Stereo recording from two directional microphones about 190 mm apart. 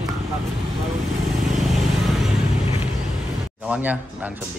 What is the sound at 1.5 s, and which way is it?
Vehicle, centre (ahead or behind).